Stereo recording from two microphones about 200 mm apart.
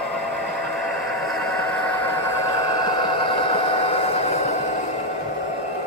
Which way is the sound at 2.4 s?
20° left (ahead or behind).